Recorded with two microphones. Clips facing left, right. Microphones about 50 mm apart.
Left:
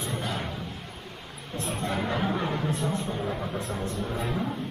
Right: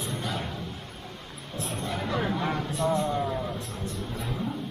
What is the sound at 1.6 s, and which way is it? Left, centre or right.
Music, centre.